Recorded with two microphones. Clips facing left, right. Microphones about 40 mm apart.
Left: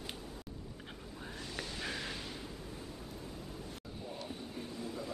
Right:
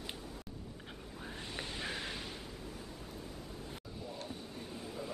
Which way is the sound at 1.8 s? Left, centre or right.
Centre.